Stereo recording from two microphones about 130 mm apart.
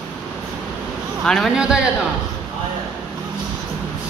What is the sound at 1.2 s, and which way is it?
Speech, 5° left (ahead or behind).